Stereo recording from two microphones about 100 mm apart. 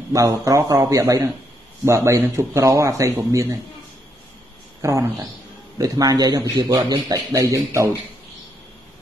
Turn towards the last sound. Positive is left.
turn(degrees=-35)  # may be behind; listen again after turning